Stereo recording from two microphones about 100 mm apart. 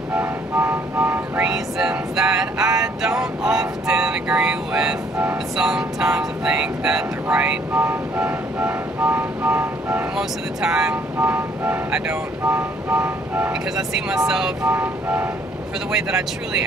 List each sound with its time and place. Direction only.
0.1 s vehicle: 20° right (ahead or behind)
1.5 s vehicle: 5° right (ahead or behind)
10.1 s speech: 5° right (ahead or behind)
11.1 s vehicle: 20° right (ahead or behind)
12.5 s music: 15° right (ahead or behind)
13.7 s speech: 5° right (ahead or behind)
14.7 s speech: 20° right (ahead or behind)
15.9 s speech: 5° right (ahead or behind)